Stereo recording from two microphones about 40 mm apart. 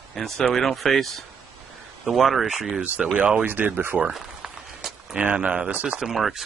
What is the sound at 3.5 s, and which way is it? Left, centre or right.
Speech, right.